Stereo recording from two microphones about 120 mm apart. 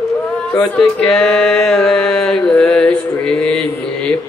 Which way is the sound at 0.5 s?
5° left (ahead or behind).